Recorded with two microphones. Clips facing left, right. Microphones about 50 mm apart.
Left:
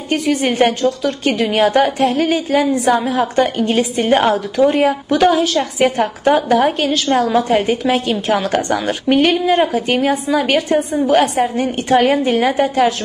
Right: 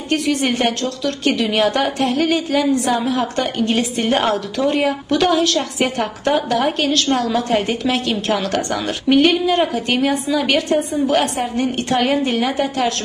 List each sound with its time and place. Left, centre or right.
0.1 s a woman's voice: centre
1.3 s a woman's voice: left
1.6 s a woman's voice: left
4.8 s a woman's voice: left
9.6 s a woman's voice: centre
10.0 s a woman's voice: left
12.4 s a woman's voice: left
12.6 s a woman's voice: centre